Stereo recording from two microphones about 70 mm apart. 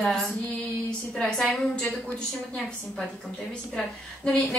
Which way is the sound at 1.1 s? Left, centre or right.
Centre.